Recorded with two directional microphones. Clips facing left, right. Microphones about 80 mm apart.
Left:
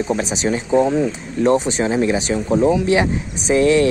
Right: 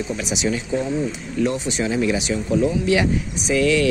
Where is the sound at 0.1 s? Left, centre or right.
Left.